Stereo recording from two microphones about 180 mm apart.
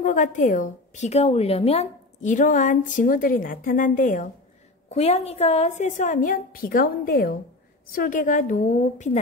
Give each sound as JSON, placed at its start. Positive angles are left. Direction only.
{"t": 0.0, "sound": "a woman's voice", "side_deg": 45}
{"t": 4.9, "sound": "a woman's voice", "side_deg": 35}